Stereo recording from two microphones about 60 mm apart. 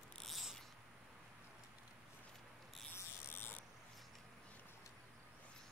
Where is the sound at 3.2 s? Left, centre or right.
Left.